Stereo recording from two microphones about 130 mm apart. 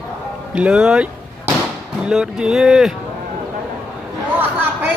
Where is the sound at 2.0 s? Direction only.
5° right (ahead or behind).